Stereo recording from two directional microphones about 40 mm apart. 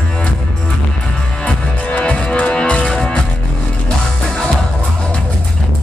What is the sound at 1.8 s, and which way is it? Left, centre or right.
Music, left.